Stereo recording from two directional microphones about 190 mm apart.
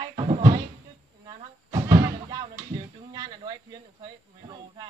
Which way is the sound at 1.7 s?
15° right (ahead or behind).